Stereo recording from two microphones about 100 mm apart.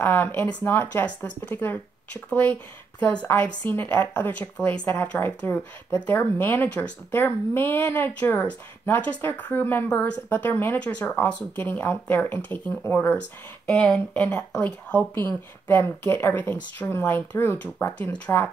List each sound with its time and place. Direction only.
0.0 s speech: 20° left (ahead or behind)